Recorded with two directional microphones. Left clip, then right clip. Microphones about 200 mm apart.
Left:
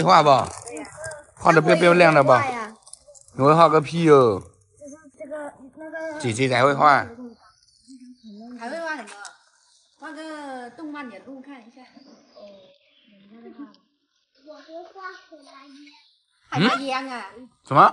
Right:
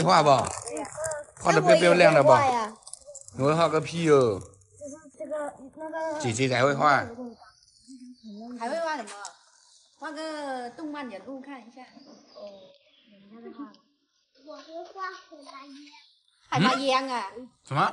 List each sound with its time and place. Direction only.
0.0 s speech: 10° right (ahead or behind)
4.8 s a sound: 40° right (ahead or behind)
6.1 s speech: 5° right (ahead or behind)
8.4 s a sound: 25° right (ahead or behind)
9.9 s a sound: 10° right (ahead or behind)
14.5 s a child's voice: 5° right (ahead or behind)
16.5 s speech: 5° right (ahead or behind)
16.8 s a woman's voice: 55° right (ahead or behind)
17.6 s speech: centre (ahead or behind)